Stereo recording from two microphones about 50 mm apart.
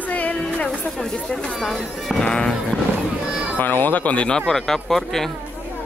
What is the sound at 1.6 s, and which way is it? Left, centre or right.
Speech, centre.